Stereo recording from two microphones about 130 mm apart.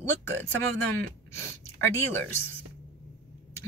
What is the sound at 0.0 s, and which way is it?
Speech, 15° left (ahead or behind).